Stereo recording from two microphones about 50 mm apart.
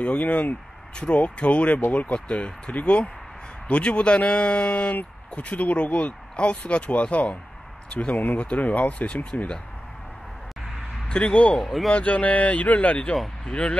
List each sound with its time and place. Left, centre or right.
0.0 s speech: left
11.1 s speech: centre
11.5 s speech: centre
11.9 s speech: left